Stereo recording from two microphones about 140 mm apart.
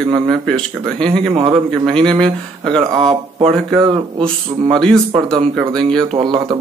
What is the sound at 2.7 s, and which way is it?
Speech, 35° right (ahead or behind).